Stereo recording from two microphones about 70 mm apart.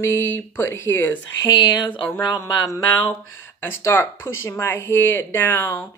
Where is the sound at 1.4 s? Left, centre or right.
Left.